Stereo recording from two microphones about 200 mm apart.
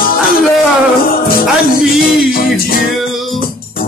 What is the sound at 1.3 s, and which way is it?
Music, 45° left (ahead or behind).